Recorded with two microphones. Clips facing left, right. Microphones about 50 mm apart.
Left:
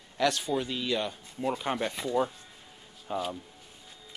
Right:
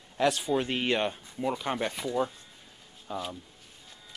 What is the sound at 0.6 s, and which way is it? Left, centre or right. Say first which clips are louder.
Speech: right 3 dB; right.